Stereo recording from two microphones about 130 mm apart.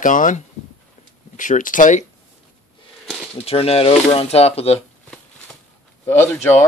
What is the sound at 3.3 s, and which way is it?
Speech, 50° left (ahead or behind).